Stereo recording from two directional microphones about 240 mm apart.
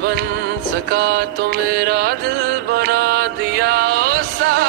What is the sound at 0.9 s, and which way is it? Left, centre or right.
Music, right.